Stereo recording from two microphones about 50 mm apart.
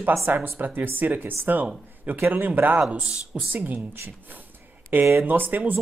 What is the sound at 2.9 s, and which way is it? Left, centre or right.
Speech, right.